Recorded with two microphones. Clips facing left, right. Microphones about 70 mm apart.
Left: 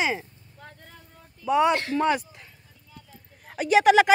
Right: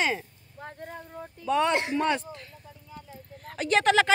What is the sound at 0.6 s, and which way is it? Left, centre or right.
Vehicle, right.